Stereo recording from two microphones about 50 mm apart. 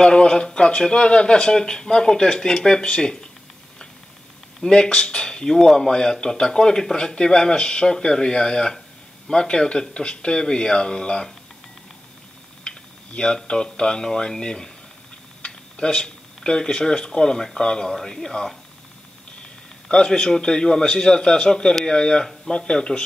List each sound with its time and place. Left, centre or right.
0.0 s speech: centre
4.6 s speech: centre
12.6 s speech: centre
19.9 s speech: centre